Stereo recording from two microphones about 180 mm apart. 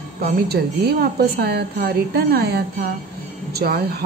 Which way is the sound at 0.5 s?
60° right (ahead or behind).